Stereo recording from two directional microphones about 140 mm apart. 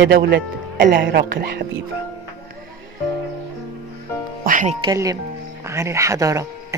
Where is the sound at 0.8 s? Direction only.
90° right.